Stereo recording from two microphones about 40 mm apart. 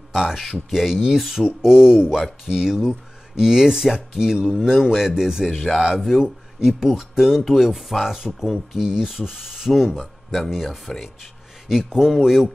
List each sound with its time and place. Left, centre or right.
0.1 s speech: centre
0.4 s speech: centre
1.4 s speech: centre